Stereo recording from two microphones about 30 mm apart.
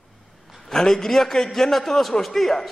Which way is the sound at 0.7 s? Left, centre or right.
Centre.